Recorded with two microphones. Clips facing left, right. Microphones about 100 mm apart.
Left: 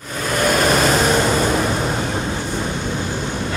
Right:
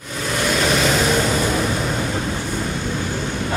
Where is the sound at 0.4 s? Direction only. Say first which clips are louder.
Left 3 dB; 50° left (ahead or behind).